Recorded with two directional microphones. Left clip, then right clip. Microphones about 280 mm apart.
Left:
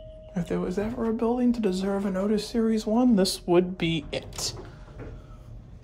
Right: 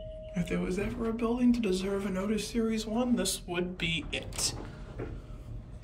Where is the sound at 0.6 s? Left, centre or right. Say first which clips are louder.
Left 6 dB; left.